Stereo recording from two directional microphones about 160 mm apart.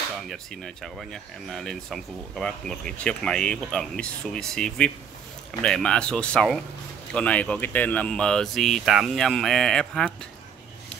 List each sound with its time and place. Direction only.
0.3 s speech: centre (ahead or behind)